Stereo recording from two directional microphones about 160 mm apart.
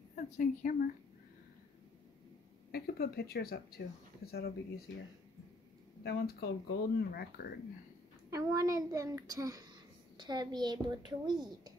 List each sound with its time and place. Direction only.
0.1 s speech: 50° left (ahead or behind)
2.7 s speech: 75° left (ahead or behind)
6.0 s speech: 75° left (ahead or behind)
8.3 s a woman's voice: 20° right (ahead or behind)